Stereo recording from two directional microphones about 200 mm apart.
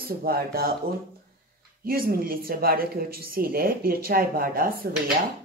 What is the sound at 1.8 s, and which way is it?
Speech, 45° right (ahead or behind).